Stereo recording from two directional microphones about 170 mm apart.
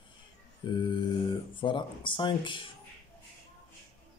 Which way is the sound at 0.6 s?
30° left (ahead or behind).